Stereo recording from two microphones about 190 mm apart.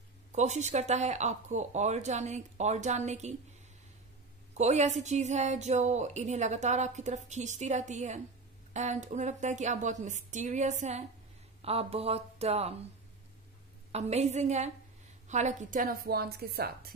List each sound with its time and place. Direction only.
0.3 s speech: 35° right (ahead or behind)
4.6 s speech: 35° right (ahead or behind)
13.9 s a woman's voice: 35° right (ahead or behind); by 16.9 s 55° right (ahead or behind)